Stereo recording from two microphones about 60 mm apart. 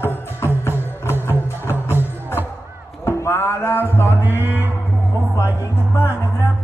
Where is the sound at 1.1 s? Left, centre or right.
Left.